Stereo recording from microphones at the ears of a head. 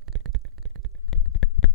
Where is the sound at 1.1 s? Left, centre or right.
Left.